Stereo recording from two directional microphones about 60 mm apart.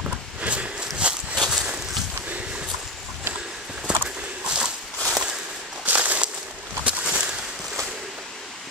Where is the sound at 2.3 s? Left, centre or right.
Centre.